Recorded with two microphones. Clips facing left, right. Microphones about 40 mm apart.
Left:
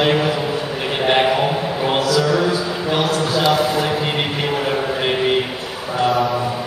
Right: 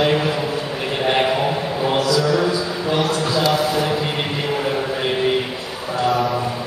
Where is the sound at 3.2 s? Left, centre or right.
Left.